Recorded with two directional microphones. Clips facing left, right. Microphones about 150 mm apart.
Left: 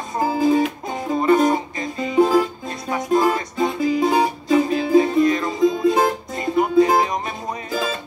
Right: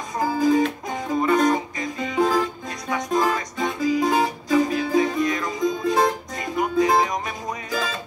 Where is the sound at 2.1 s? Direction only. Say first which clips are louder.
Left 5 dB; 10° left (ahead or behind).